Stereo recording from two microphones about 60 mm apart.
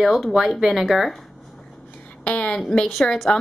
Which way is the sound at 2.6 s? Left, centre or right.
Centre.